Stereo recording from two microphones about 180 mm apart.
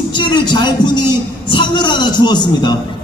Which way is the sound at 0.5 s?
25° left (ahead or behind).